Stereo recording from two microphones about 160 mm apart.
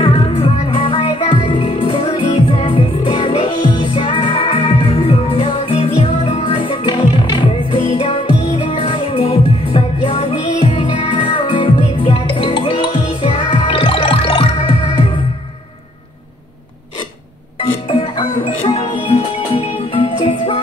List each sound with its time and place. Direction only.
0.0 s music: 35° left (ahead or behind)
17.8 s music: 30° left (ahead or behind)